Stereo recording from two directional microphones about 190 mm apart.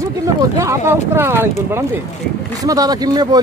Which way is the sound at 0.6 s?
15° right (ahead or behind).